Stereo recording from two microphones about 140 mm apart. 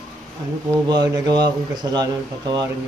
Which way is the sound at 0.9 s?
30° right (ahead or behind).